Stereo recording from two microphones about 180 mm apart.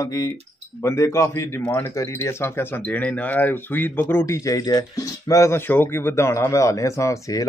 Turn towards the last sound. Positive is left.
turn(degrees=15)  # may be behind; listen again after turning